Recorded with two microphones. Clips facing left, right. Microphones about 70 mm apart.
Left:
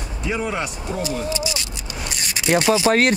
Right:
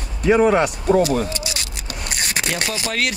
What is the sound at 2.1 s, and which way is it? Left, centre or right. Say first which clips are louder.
Zipper: right 6 dB; right.